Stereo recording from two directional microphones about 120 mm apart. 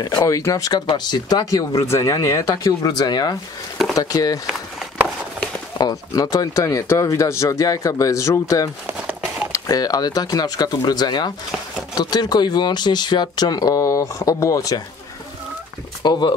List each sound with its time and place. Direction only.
0.0 s speech: 30° left (ahead or behind)
5.8 s speech: 35° left (ahead or behind)
16.0 s speech: 40° left (ahead or behind)